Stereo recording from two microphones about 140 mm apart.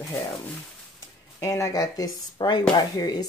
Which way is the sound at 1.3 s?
20° left (ahead or behind).